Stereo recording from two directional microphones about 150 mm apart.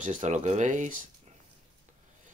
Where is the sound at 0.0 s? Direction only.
55° right (ahead or behind).